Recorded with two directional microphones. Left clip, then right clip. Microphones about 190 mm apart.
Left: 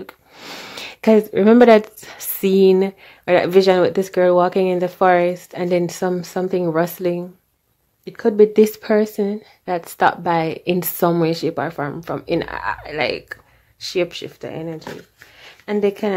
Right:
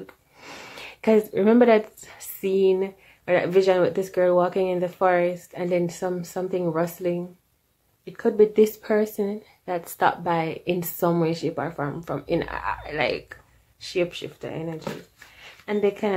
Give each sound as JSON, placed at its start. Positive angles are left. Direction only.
{"t": 0.0, "sound": "speech", "side_deg": 40}